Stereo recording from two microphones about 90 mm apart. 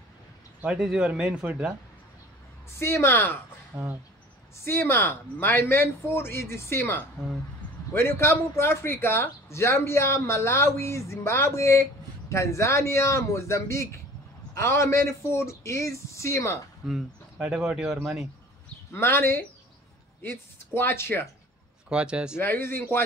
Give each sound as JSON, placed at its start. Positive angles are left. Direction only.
{"t": 0.7, "sound": "speech", "side_deg": -5}
{"t": 2.8, "sound": "speech", "side_deg": 25}
{"t": 3.7, "sound": "speech", "side_deg": -35}
{"t": 4.6, "sound": "speech", "side_deg": 25}
{"t": 16.8, "sound": "speech", "side_deg": -5}
{"t": 18.9, "sound": "speech", "side_deg": 25}
{"t": 21.8, "sound": "speech", "side_deg": -10}
{"t": 22.4, "sound": "speech", "side_deg": 25}